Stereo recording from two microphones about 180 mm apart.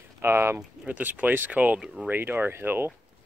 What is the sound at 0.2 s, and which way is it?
Speech, 15° right (ahead or behind).